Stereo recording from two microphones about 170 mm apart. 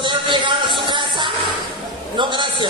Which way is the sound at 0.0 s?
25° right (ahead or behind).